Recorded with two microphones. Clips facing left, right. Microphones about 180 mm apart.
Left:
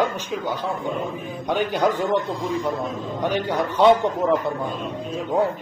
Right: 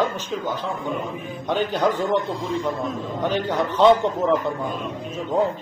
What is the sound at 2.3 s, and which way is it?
Speech, 30° right (ahead or behind).